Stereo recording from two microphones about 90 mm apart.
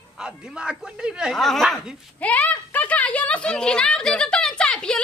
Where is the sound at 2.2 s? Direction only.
15° left (ahead or behind).